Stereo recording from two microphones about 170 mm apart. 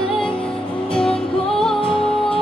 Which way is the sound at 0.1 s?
5° left (ahead or behind).